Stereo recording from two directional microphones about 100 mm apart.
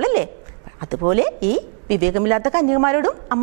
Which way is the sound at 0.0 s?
15° right (ahead or behind).